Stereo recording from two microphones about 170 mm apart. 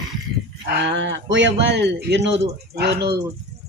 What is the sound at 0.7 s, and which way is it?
Speech, 90° right.